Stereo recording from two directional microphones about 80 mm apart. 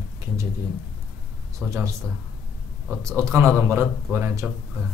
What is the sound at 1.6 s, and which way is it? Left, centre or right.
Speech, centre.